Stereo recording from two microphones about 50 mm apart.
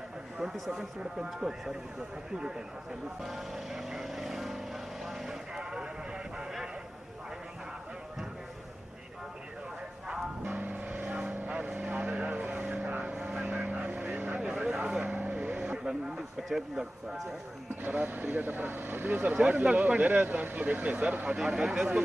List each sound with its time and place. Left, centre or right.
0.4 s speech: centre
3.2 s vehicle: centre
10.4 s vehicle: right
12.6 s vehicle: centre
13.5 s vehicle: right
14.4 s a sound: centre
14.9 s vehicle: right
16.4 s speech: centre
17.8 s speech: right
19.1 s speech: right
21.3 s speech: centre